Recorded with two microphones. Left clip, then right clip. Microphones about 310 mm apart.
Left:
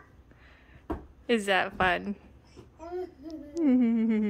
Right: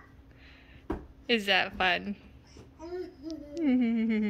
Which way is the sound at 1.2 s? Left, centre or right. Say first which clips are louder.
Even; centre.